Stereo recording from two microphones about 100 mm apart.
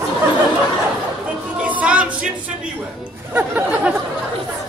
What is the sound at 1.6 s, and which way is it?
Music, 10° right (ahead or behind).